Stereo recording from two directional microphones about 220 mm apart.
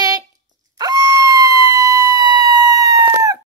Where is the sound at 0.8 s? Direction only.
15° right (ahead or behind).